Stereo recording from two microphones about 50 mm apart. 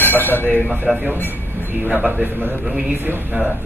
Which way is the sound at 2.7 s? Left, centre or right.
Right.